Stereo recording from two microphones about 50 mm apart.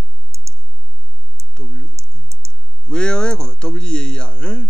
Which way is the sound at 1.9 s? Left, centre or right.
Right.